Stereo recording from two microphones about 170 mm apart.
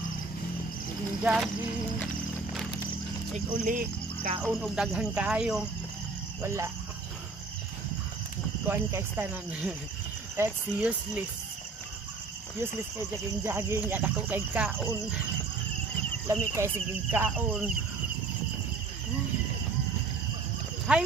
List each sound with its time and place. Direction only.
1.2 s speech: 5° right (ahead or behind)
3.6 s speech: 50° right (ahead or behind)
4.4 s speech: 10° right (ahead or behind)
8.6 s speech: 10° right (ahead or behind)
13.4 s speech: 15° right (ahead or behind)
16.3 s speech: 15° right (ahead or behind)
20.9 s cricket: 5° right (ahead or behind)